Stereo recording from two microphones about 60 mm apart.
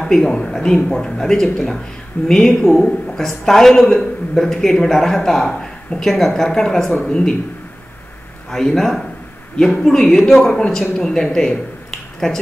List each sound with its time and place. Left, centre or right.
0.0 s speech: centre
8.5 s a man's voice: centre
11.3 s a sound: centre